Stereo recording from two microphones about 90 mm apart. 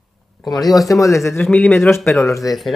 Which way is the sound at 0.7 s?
40° left (ahead or behind).